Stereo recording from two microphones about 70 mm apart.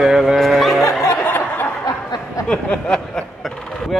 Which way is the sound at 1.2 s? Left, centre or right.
Left.